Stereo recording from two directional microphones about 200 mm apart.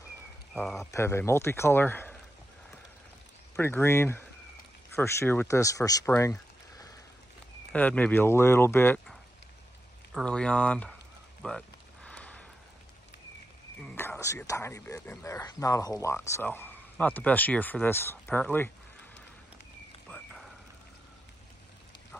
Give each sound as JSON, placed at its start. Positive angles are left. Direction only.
{"t": 0.6, "sound": "speech", "side_deg": 0}
{"t": 0.9, "sound": "speech", "side_deg": 15}
{"t": 3.5, "sound": "speech", "side_deg": 10}
{"t": 7.7, "sound": "speech", "side_deg": 5}
{"t": 11.4, "sound": "a sound", "side_deg": 5}
{"t": 13.7, "sound": "speech", "side_deg": 10}